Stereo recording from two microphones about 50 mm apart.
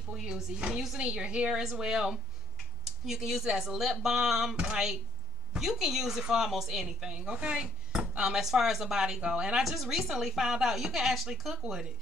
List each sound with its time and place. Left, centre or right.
0.1 s speech: centre
1.6 s speech: centre
4.6 s speech: right
5.6 s speech: centre
8.4 s speech: centre
9.6 s a woman's voice: centre